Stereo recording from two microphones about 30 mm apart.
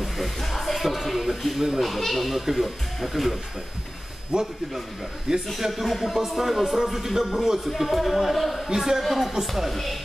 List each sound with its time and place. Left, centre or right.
0.4 s music: centre
1.8 s a man's voice: centre
4.3 s a man's voice: right
5.3 s speech: centre
5.6 s a man's voice: centre
8.6 s speech: centre
9.0 s a man's voice: centre